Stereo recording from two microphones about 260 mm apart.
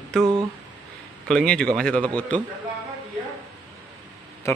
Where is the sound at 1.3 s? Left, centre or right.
Centre.